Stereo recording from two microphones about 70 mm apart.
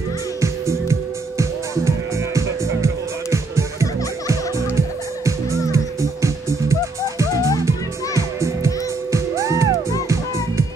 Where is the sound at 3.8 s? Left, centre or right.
Left.